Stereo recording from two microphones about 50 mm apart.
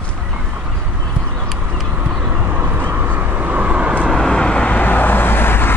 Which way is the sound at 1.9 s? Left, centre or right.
Right.